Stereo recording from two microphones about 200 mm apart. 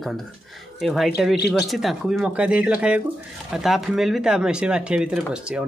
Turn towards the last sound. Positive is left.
turn(degrees=-5)  # may be behind; listen again after turning